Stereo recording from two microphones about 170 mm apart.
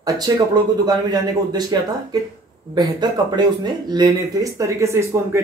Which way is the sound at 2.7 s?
25° right (ahead or behind).